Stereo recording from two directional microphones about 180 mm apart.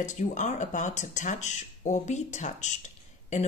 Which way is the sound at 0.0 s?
45° left (ahead or behind).